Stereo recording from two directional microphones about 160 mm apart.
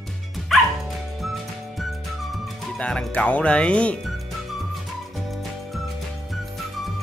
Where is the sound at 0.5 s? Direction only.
Centre (ahead or behind).